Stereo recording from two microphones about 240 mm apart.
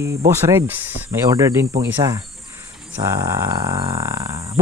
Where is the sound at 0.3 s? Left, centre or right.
Centre.